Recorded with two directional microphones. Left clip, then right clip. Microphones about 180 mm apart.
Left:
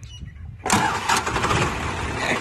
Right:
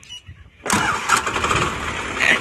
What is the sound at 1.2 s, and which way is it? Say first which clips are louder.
Vehicle: right 2 dB; 5° left (ahead or behind).